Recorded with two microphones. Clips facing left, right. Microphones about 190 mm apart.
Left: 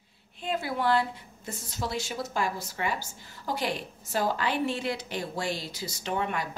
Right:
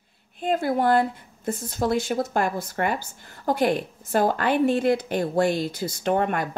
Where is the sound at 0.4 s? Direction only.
50° right (ahead or behind).